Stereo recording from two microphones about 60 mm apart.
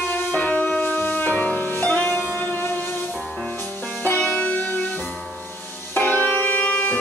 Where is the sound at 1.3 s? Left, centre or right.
Centre.